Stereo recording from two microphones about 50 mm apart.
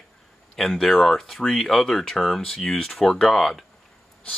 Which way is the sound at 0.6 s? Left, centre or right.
Centre.